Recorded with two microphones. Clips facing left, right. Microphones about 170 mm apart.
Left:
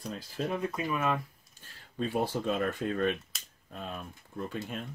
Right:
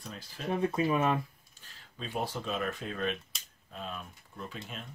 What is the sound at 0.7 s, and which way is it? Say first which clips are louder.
Speech: right 4 dB; 30° right (ahead or behind).